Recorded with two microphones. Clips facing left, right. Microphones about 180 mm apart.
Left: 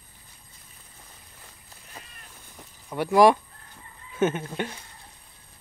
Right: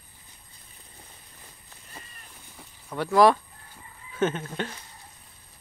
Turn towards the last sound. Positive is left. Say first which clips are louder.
# left 2 dB
turn(degrees=15)  # may be behind; listen again after turning